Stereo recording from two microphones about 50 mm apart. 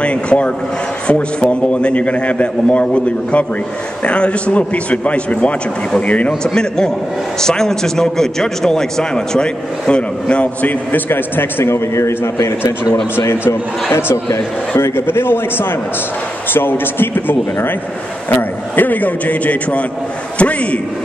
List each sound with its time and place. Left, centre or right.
0.0 s a man's voice: left
6.4 s a man's voice: centre; by 11.0 s left
11.1 s a man's voice: left
11.7 s a man's voice: left
13.9 s a man's voice: left
14.8 s a man's voice: left